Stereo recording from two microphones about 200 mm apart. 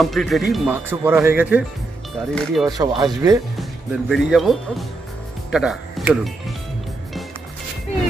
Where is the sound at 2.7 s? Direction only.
20° right (ahead or behind).